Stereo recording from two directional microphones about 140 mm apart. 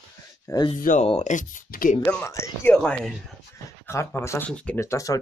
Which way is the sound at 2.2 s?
20° left (ahead or behind).